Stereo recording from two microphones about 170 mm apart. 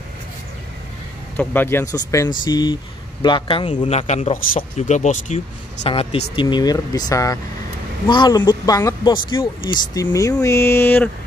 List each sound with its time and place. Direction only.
1.3 s speech: 10° left (ahead or behind); by 5.4 s 45° left (ahead or behind)
5.9 s speech: 35° left (ahead or behind)
10.4 s a sound: 15° left (ahead or behind)